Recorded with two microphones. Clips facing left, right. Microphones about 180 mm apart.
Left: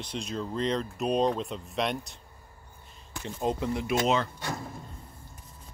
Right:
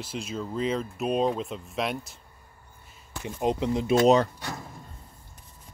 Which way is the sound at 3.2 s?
20° right (ahead or behind).